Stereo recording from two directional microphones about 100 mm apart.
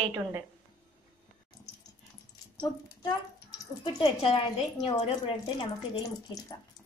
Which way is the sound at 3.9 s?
75° left (ahead or behind).